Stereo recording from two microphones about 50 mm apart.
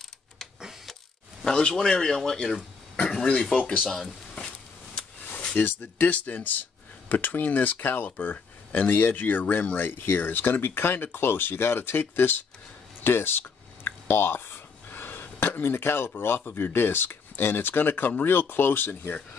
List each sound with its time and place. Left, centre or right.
1.4 s speech: centre
5.6 s speech: left